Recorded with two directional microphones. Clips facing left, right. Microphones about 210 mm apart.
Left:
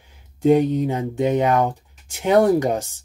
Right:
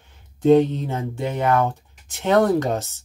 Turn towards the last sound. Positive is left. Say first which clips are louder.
# left 2 dB
turn(degrees=15)  # may be behind; listen again after turning